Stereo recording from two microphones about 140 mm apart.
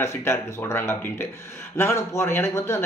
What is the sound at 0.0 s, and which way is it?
Speech, 20° left (ahead or behind).